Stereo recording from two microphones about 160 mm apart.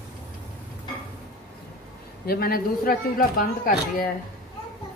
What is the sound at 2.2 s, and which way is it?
A man's voice, 70° left (ahead or behind).